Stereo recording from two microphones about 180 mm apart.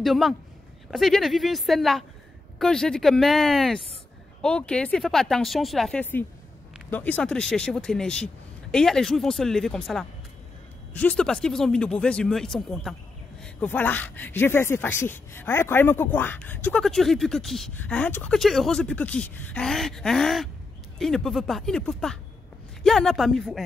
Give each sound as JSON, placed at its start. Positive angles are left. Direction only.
{"t": 0.0, "sound": "speech", "side_deg": 0}